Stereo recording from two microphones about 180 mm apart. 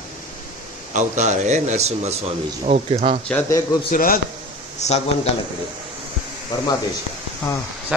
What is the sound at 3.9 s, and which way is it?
Speech, 50° left (ahead or behind).